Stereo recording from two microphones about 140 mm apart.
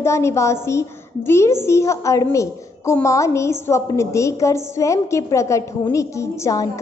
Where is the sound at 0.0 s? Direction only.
20° left (ahead or behind).